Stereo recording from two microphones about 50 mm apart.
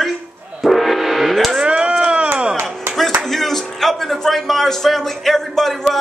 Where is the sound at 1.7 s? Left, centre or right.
Right.